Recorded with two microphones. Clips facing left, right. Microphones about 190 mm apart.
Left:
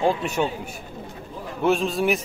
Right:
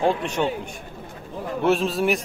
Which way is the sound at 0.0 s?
5° left (ahead or behind).